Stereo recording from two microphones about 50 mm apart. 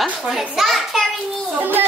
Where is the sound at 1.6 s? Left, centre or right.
Right.